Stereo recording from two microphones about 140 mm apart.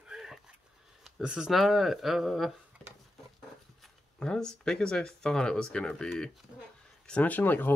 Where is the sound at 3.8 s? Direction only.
5° left (ahead or behind).